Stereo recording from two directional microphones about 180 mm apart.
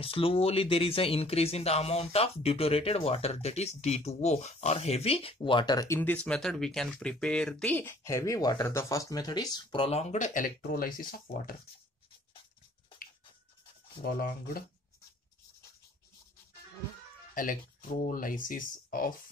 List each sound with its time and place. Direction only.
0.0 s speech: 30° left (ahead or behind); by 11.5 s 50° left (ahead or behind)
14.0 s speech: 55° left (ahead or behind)
17.3 s speech: 50° left (ahead or behind)